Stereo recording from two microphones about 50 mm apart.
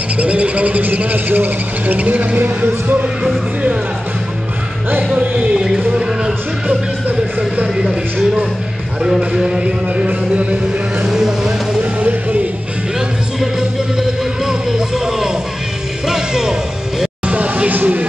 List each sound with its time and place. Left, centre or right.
0.2 s speech: right
4.9 s music: right
5.5 s music: centre
6.7 s music: right
7.6 s a sound: centre
9.6 s music: right
11.1 s vehicle: centre
13.4 s music: centre
17.3 s a sound: right